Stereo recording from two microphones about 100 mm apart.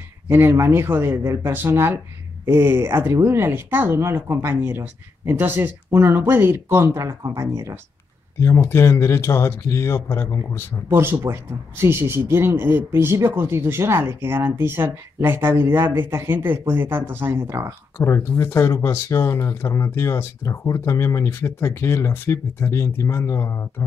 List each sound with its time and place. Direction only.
0.3 s speech: 25° right (ahead or behind)
8.4 s speech: 30° left (ahead or behind)
10.9 s speech: 25° right (ahead or behind)
17.9 s speech: 25° left (ahead or behind)